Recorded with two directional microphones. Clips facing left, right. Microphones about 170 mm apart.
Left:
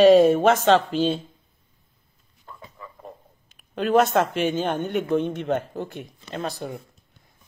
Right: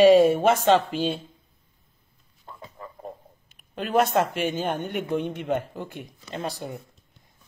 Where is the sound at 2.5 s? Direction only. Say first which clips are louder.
Even; 25° right (ahead or behind).